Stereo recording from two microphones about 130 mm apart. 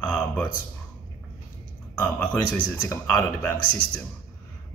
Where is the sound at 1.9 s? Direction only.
10° left (ahead or behind).